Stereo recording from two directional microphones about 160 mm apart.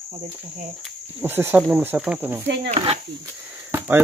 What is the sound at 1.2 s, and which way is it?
Speech, 15° right (ahead or behind).